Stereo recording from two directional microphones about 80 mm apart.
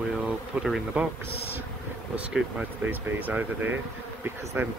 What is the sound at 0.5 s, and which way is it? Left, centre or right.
Speech, centre.